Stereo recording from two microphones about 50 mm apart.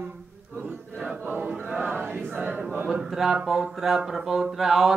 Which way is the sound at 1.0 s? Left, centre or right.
Right.